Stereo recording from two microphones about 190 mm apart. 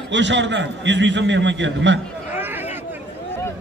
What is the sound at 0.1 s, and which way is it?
A man's voice, 70° right (ahead or behind).